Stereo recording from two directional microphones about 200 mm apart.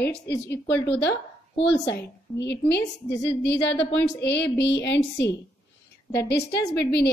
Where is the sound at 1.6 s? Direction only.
60° left (ahead or behind).